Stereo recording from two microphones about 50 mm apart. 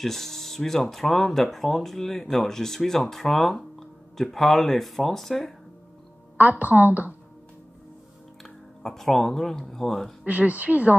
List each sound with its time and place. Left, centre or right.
0.0 s speech: centre
6.6 s a woman's voice: right
8.8 s speech: centre
10.2 s a woman's voice: right